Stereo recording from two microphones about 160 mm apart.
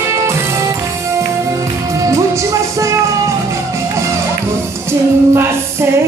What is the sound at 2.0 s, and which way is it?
Music, 20° right (ahead or behind).